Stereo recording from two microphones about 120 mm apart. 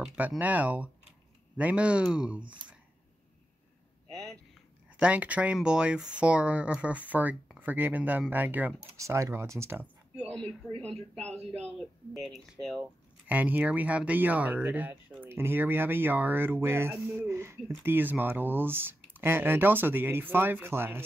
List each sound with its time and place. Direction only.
0.0 s speech: 5° right (ahead or behind)
4.9 s speech: 10° right (ahead or behind)
8.9 s speech: 25° right (ahead or behind)
10.3 s speech: 5° left (ahead or behind)
12.8 s speech: 15° right (ahead or behind)